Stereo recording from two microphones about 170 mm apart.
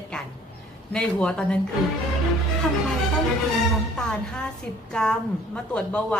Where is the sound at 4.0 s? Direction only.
5° left (ahead or behind).